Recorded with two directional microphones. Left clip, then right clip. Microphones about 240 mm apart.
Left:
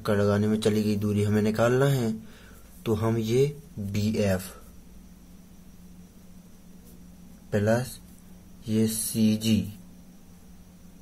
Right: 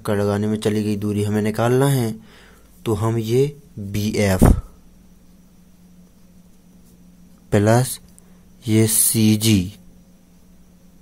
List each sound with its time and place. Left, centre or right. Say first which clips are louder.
0.0 s speech: right 4 dB; right
7.4 s speech: right 8 dB; right
8.6 s a sound: right 9 dB; right